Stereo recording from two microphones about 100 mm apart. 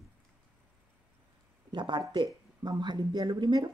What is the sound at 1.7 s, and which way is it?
Speech, 50° right (ahead or behind).